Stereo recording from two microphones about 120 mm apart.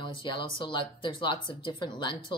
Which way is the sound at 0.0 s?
40° left (ahead or behind).